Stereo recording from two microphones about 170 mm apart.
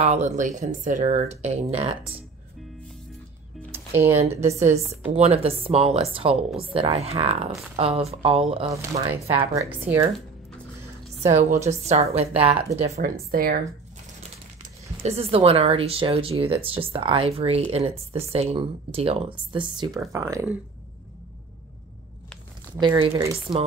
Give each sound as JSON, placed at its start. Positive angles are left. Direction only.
{"t": 0.0, "sound": "speech", "side_deg": -40}
{"t": 3.7, "sound": "music", "side_deg": -15}
{"t": 4.2, "sound": "speech", "side_deg": -40}
{"t": 9.4, "sound": "a woman's voice", "side_deg": -15}
{"t": 11.3, "sound": "speech", "side_deg": -40}
{"t": 13.3, "sound": "speech", "side_deg": -60}
{"t": 15.0, "sound": "speech", "side_deg": -35}
{"t": 22.9, "sound": "speech", "side_deg": -30}